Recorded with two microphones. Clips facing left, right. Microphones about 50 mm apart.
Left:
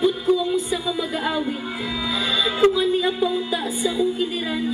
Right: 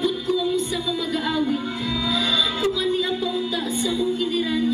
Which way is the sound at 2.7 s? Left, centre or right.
Centre.